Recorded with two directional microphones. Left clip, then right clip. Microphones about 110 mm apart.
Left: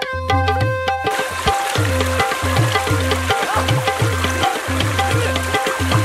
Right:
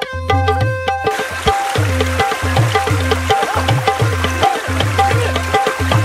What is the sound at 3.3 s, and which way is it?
Music, 25° right (ahead or behind).